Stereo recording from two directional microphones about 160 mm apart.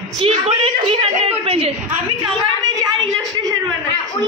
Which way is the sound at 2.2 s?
25° right (ahead or behind).